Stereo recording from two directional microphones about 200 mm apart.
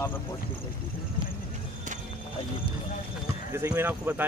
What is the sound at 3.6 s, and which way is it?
Speech, 10° right (ahead or behind).